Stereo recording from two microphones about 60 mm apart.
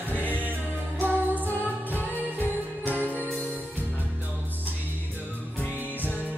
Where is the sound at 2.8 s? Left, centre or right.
Right.